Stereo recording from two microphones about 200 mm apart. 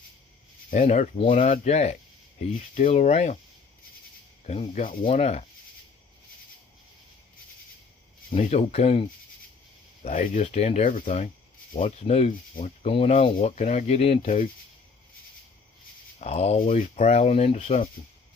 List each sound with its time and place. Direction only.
0.7 s speech: 40° left (ahead or behind)
4.5 s speech: 35° left (ahead or behind)
8.3 s speech: 30° left (ahead or behind)
10.0 s speech: 40° left (ahead or behind)
16.2 s speech: 30° left (ahead or behind)